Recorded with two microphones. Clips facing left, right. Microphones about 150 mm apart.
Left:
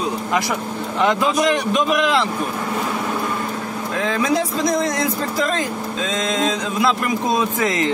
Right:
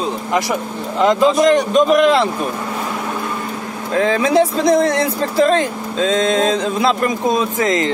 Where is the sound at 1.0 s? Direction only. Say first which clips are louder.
Right 5 dB; 30° right (ahead or behind).